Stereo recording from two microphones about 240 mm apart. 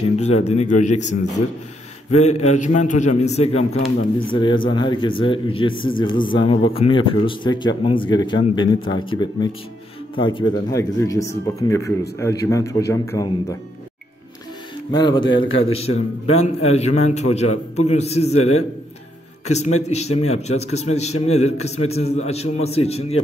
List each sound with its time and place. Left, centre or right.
0.0 s speech: left; by 13.6 s centre
14.9 s speech: centre
18.4 s a man's voice: left
19.4 s a man's voice: left